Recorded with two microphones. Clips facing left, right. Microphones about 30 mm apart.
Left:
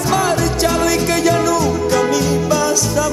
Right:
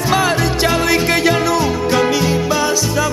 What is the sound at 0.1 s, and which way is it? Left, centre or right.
Music, right.